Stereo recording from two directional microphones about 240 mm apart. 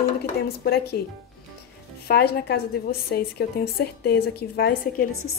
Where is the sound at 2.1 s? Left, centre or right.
Left.